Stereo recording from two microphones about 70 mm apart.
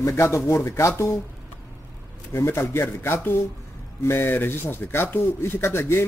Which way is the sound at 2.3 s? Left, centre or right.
Left.